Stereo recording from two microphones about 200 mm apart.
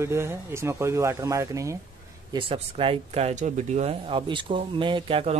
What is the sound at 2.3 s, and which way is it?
Speech, 25° right (ahead or behind).